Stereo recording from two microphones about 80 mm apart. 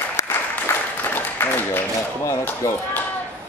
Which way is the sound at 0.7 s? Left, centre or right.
Left.